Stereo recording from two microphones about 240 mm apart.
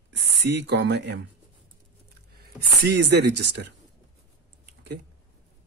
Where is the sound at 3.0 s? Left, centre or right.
Right.